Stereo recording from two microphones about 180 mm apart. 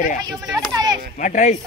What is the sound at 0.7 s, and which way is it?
Speech, 20° right (ahead or behind).